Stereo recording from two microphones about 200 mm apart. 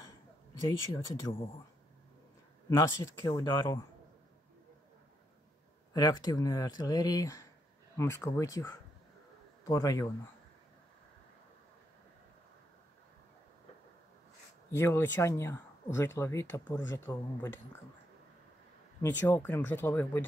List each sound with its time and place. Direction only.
0.7 s speech: 20° left (ahead or behind)
2.7 s speech: 20° left (ahead or behind)
5.9 s speech: 20° left (ahead or behind)
14.8 s speech: 10° left (ahead or behind)
18.9 s speech: 10° left (ahead or behind)